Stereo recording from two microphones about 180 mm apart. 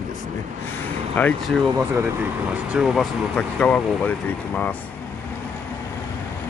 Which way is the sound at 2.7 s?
5° right (ahead or behind).